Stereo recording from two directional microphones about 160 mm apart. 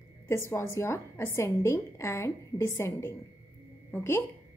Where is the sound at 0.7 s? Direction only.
15° left (ahead or behind).